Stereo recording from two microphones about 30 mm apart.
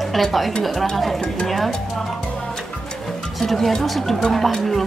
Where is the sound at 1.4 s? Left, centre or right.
Centre.